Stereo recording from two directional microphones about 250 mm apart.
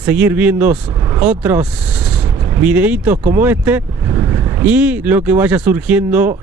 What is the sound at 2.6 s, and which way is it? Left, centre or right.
Speech, centre.